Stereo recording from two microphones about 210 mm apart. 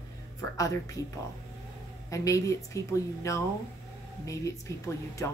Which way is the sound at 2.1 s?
15° left (ahead or behind).